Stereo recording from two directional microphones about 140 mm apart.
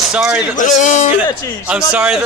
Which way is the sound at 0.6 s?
60° left (ahead or behind).